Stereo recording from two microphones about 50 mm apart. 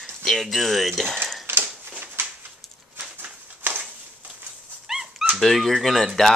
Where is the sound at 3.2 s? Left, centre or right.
Right.